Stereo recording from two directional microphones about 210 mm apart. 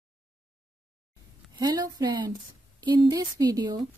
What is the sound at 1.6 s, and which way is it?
Speech, 20° right (ahead or behind).